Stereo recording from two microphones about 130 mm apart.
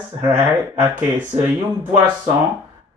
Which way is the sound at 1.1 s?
20° right (ahead or behind).